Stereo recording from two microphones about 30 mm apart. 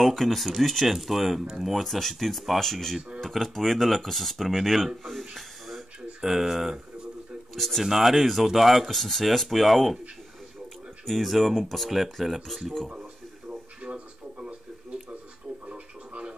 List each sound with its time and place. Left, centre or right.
0.0 s speech: centre
0.8 s speech: centre
5.3 s a sound: centre
6.2 s speech: centre
7.5 s speech: centre
8.0 s speech: centre
11.1 s speech: centre
13.5 s a sound: right
15.7 s a sound: right